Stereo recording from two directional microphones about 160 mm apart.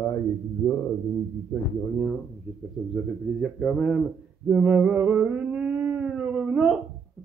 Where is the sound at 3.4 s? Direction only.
Centre (ahead or behind).